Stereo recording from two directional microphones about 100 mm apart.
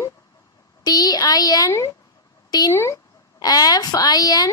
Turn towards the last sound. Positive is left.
turn(degrees=40)  # may be behind; listen again after turning